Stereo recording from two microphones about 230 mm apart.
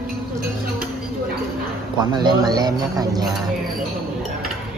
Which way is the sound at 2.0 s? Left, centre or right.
Centre.